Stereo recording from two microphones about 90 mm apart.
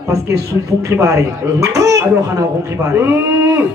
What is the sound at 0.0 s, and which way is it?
Speech, 35° right (ahead or behind).